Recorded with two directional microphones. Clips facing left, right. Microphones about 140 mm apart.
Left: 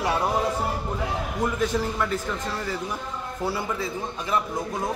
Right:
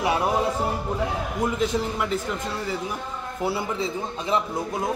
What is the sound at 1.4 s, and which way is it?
A man's voice, 15° right (ahead or behind).